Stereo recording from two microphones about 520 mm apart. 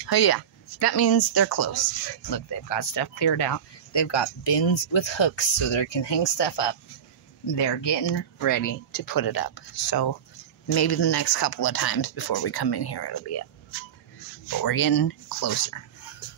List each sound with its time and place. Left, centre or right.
0.0 s speech: left
8.4 s speech: left
14.6 s speech: left